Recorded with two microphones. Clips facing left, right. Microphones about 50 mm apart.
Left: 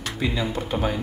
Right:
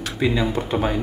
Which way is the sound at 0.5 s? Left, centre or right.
Right.